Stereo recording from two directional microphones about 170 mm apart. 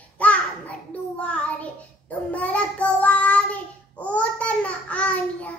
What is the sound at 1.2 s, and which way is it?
Child singing, 5° left (ahead or behind).